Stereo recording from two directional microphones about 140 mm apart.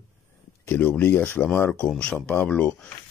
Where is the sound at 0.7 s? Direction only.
15° left (ahead or behind).